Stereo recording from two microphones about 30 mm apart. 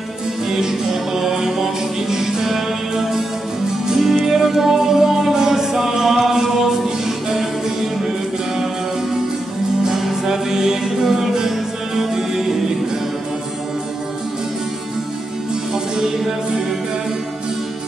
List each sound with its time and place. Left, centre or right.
0.5 s music: centre
9.8 s music: centre
15.7 s music: centre